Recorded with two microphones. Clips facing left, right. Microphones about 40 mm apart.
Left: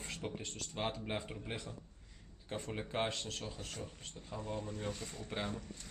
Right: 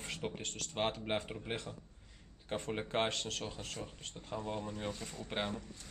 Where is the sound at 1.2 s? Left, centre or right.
Centre.